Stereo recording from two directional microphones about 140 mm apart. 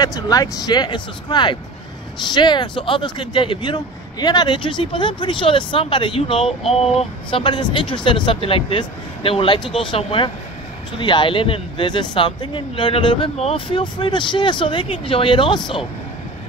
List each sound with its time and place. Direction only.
0.0 s speech: 25° left (ahead or behind)